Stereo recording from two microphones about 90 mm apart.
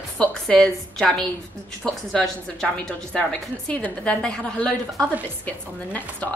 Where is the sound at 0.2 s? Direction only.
10° left (ahead or behind).